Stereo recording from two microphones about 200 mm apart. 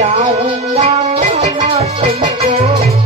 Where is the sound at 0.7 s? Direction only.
30° right (ahead or behind).